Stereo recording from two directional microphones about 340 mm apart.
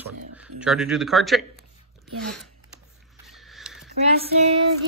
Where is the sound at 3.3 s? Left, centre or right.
Centre.